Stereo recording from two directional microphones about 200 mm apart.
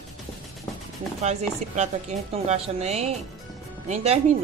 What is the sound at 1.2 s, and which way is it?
Speech, 35° right (ahead or behind).